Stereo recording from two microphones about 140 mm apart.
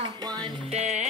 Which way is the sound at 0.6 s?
55° right (ahead or behind).